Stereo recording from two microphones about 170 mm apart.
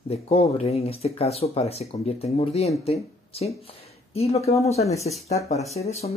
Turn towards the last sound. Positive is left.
turn(degrees=40)  # may be behind; listen again after turning